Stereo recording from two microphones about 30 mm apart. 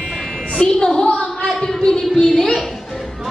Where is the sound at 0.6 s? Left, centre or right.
Centre.